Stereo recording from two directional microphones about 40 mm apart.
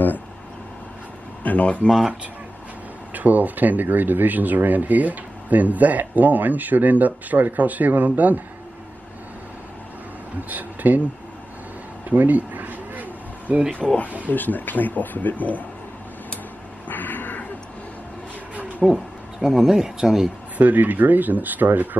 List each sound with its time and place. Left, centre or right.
1.4 s speech: left
3.1 s speech: right
10.5 s speech: right
12.1 s a sound: right
13.8 s speech: centre
14.3 s speech: left
16.8 s a sound: left
18.8 s speech: centre
19.7 s speech: centre
20.5 s speech: right